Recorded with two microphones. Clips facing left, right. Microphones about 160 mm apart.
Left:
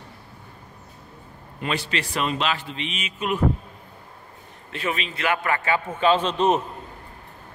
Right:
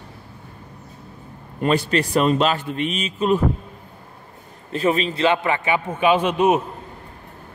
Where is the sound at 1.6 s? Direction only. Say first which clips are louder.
Right 8 dB; 45° right (ahead or behind).